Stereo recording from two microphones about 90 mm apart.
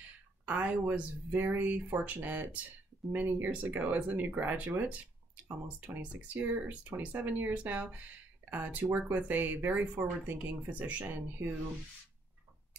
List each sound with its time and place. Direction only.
0.5 s speech: 20° right (ahead or behind)